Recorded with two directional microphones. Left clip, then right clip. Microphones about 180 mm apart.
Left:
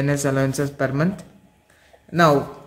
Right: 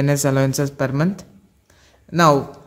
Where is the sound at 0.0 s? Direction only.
45° right (ahead or behind).